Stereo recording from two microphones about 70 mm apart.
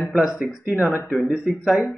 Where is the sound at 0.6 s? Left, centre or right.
Right.